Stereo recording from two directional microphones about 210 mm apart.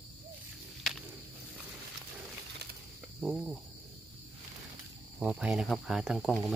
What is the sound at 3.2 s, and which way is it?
Speech, centre (ahead or behind).